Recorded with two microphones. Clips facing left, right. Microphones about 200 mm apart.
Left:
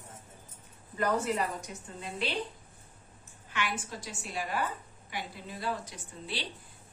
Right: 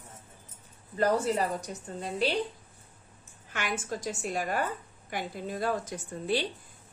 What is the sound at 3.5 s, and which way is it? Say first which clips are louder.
A woman's voice: right 2 dB; 45° right (ahead or behind).